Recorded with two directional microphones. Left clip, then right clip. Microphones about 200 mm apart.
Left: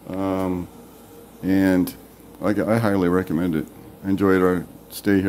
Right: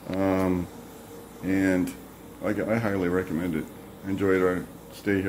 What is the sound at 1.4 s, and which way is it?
Speech, 30° left (ahead or behind).